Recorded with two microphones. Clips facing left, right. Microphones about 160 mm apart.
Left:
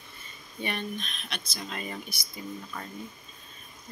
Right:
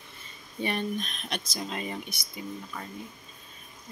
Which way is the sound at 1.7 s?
25° right (ahead or behind).